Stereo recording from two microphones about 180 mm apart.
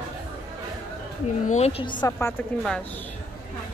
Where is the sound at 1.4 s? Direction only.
40° left (ahead or behind).